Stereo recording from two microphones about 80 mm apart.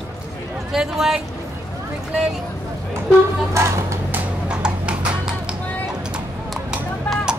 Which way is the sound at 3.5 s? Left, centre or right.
Right.